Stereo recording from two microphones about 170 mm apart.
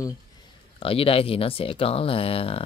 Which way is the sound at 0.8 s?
35° left (ahead or behind).